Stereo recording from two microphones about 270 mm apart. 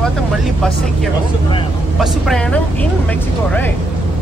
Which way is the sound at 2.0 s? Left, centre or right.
Centre.